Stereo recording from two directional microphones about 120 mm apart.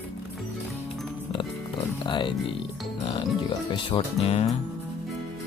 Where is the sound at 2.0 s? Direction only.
40° left (ahead or behind).